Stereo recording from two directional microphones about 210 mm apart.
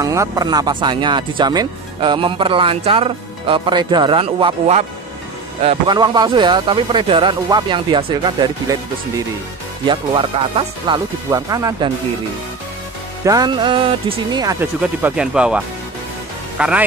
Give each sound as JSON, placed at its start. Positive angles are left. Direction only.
{"t": 0.0, "sound": "speech", "side_deg": -15}
{"t": 9.8, "sound": "speech", "side_deg": -25}
{"t": 13.2, "sound": "speech", "side_deg": -15}